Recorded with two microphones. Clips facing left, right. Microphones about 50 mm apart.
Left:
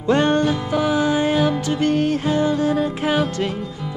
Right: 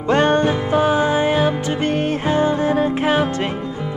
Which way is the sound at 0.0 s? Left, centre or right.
Right.